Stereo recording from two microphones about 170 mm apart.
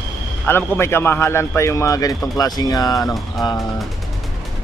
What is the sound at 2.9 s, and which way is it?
Speech, centre (ahead or behind).